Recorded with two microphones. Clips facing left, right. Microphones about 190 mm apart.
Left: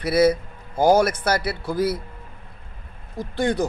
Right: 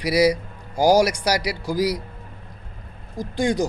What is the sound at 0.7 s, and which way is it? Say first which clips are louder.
Speech: even; 25° left (ahead or behind).